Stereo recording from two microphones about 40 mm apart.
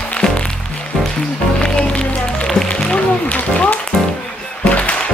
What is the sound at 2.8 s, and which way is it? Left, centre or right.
Music, left.